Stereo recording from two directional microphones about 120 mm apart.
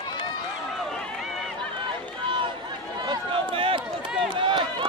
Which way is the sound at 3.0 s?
50° right (ahead or behind).